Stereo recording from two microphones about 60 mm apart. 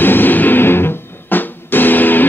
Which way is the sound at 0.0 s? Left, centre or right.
Left.